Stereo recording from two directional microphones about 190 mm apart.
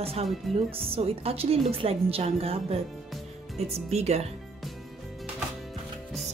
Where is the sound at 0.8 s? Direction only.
30° right (ahead or behind).